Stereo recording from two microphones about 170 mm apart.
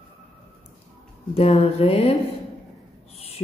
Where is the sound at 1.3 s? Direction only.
35° left (ahead or behind).